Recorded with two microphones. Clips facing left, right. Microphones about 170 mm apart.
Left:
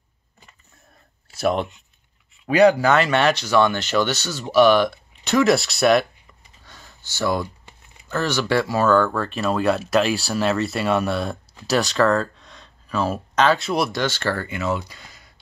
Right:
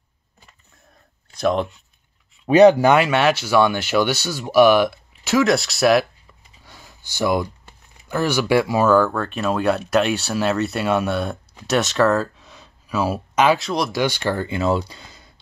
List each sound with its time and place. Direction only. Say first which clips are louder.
1.3 s speech: right 1 dB; 5° left (ahead or behind)
2.4 s speech: right 4 dB; 25° right (ahead or behind)
3.0 s speech: right 1 dB; 5° right (ahead or behind)
6.6 s a sound: right 2 dB; 10° right (ahead or behind)
8.1 s speech: right 3 dB; 10° right (ahead or behind)
13.6 s speech: left 1 dB; 5° left (ahead or behind)
13.9 s speech: right 2 dB; 15° right (ahead or behind)
14.5 s speech: right 4 dB; 30° right (ahead or behind)